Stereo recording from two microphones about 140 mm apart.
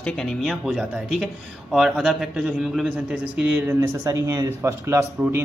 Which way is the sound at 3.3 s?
15° right (ahead or behind).